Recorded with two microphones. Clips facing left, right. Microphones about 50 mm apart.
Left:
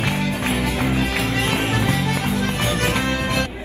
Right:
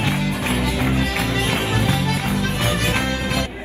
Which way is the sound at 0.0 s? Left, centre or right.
Left.